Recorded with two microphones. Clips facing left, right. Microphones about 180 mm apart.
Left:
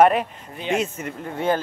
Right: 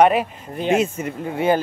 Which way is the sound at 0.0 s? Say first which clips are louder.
Right 1 dB; 5° right (ahead or behind).